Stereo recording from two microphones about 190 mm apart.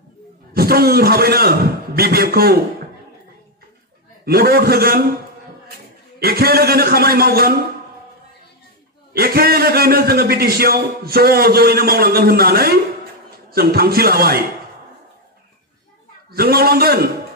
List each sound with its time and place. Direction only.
0.6 s a man's voice: 55° right (ahead or behind)
4.2 s a man's voice: 55° right (ahead or behind)
6.1 s a man's voice: 55° right (ahead or behind)
9.1 s a man's voice: 55° right (ahead or behind)
16.3 s a man's voice: 55° right (ahead or behind)